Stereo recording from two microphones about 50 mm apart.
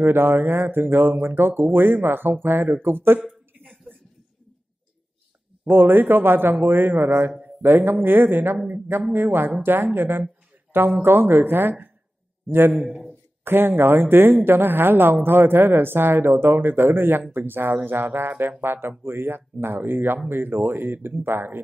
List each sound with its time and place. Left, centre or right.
0.0 s speech: right
5.7 s a man's voice: right